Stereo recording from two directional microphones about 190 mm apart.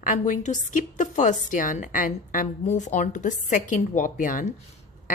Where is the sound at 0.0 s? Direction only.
40° left (ahead or behind).